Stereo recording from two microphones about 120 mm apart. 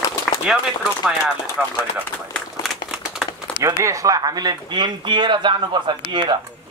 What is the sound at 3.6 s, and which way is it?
Speech, 25° right (ahead or behind).